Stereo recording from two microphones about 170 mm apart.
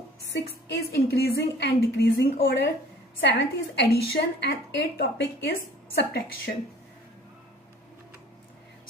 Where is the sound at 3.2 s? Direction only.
90° left; by 6.2 s 70° left (ahead or behind).